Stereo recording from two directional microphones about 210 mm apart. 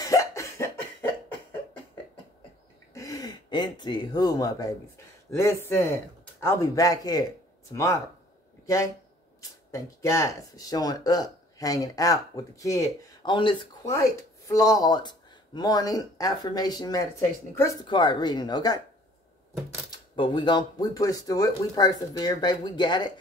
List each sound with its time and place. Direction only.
0.0 s cough: 15° left (ahead or behind)
2.9 s speech: 15° left (ahead or behind)
6.4 s speech: 15° left (ahead or behind)
20.2 s speech: 20° left (ahead or behind)